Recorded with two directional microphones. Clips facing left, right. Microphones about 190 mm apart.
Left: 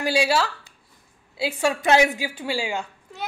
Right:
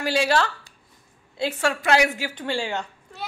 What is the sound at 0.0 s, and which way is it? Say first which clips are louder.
Speech: even; 10° left (ahead or behind).